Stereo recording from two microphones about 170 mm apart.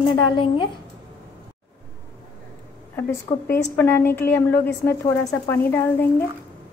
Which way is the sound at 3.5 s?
15° left (ahead or behind).